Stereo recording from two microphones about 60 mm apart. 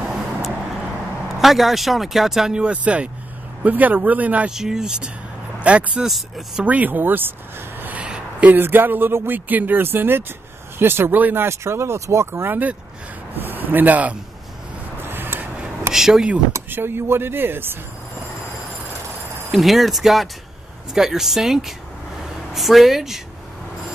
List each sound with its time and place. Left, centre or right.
1.3 s speech: centre; by 4.5 s right
4.5 s speech: centre
6.0 s speech: centre
6.6 s a man's voice: right
8.0 s a man's voice: right
11.4 s a man's voice: right
15.0 s a sound: right
15.9 s speech: centre
16.7 s a man's voice: right
19.5 s speech: centre